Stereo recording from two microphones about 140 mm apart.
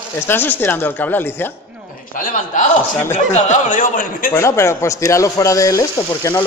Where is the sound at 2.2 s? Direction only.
65° left (ahead or behind).